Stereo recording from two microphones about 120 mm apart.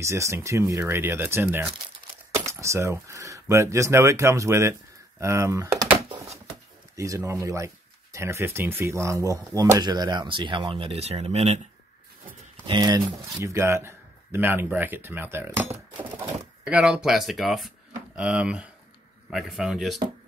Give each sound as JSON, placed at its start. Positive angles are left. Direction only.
{"t": 0.0, "sound": "speech", "side_deg": -25}
{"t": 7.0, "sound": "speech", "side_deg": -25}
{"t": 12.6, "sound": "speech", "side_deg": -35}
{"t": 13.4, "sound": "speech", "side_deg": -25}
{"t": 16.6, "sound": "speech", "side_deg": -5}